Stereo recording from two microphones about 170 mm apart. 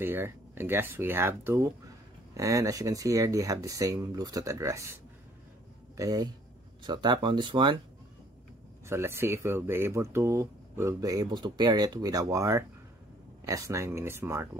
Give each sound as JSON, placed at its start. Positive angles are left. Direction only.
{"t": 0.0, "sound": "speech", "side_deg": -15}
{"t": 5.9, "sound": "speech", "side_deg": -20}
{"t": 8.8, "sound": "speech", "side_deg": -15}